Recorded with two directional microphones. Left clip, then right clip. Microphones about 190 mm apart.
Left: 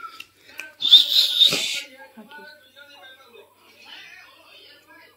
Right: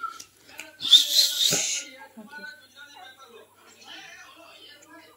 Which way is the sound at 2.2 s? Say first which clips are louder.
Left 1 dB; 20° left (ahead or behind).